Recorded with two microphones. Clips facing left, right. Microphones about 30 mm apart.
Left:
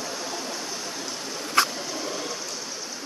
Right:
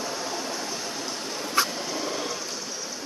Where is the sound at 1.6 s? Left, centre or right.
Left.